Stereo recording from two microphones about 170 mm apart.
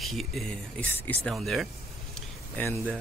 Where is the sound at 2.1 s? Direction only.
5° left (ahead or behind).